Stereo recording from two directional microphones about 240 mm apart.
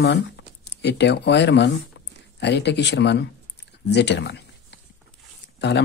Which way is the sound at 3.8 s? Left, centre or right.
Left.